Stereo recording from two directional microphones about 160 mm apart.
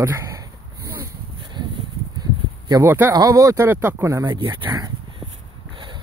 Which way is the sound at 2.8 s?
15° right (ahead or behind).